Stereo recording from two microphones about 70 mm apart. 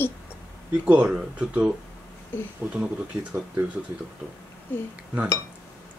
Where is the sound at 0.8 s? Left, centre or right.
Centre.